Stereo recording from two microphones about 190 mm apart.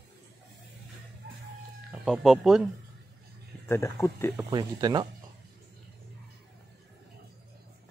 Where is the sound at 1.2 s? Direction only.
55° right (ahead or behind).